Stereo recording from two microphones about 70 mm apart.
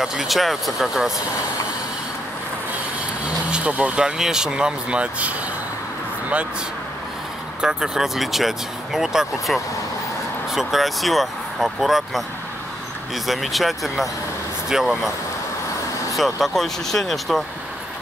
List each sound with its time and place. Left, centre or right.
0.0 s speech: centre
3.3 s vehicle: centre
4.2 s speech: centre
7.6 s speech: centre
16.2 s speech: centre